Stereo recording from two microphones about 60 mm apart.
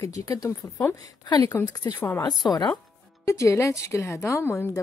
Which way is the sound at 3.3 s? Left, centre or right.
Left.